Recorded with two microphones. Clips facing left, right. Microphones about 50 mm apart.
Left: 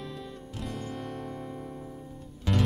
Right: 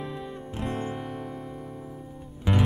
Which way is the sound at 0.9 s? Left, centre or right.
Centre.